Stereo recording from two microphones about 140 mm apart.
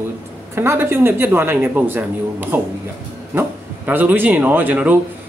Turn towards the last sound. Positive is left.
turn(degrees=-10)  # may be behind; listen again after turning